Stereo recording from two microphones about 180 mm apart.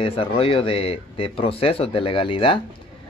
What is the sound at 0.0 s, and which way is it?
Speech, 30° left (ahead or behind).